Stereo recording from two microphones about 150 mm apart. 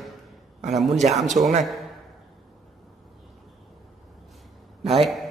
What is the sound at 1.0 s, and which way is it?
Speech, 55° right (ahead or behind).